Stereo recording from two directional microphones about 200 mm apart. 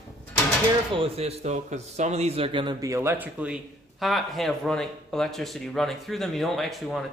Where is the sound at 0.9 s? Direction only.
30° right (ahead or behind).